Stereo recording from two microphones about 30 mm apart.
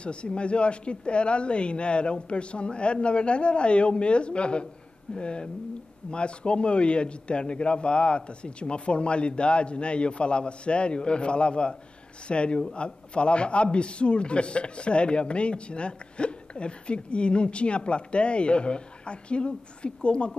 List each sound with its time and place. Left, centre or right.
0.0 s a man's voice: left